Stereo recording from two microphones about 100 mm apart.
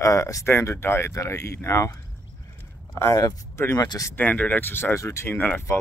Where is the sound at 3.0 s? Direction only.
30° left (ahead or behind).